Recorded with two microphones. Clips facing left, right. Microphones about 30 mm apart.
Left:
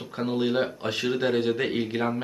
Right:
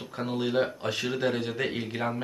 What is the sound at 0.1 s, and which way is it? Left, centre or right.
Speech, centre.